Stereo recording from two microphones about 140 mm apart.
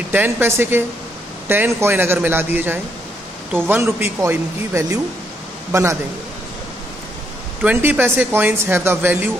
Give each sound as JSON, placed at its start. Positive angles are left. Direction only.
{"t": 0.1, "sound": "a man's voice", "side_deg": -15}
{"t": 7.6, "sound": "speech", "side_deg": -10}